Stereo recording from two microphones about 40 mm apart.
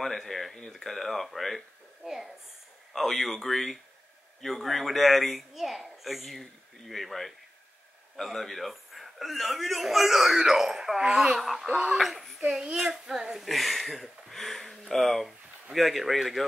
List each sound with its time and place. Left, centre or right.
0.0 s a man's voice: centre
2.9 s a man's voice: centre
5.5 s a man's voice: centre
11.0 s speech: centre
11.3 s a man's voice: centre